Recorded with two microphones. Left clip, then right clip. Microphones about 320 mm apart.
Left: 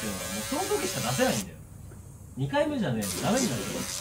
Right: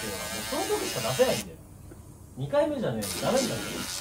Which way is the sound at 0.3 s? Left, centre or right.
Centre.